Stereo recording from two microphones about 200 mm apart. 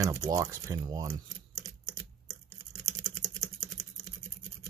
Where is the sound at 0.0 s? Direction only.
15° right (ahead or behind).